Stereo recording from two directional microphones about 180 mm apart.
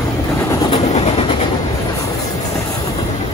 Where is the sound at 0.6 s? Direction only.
35° left (ahead or behind).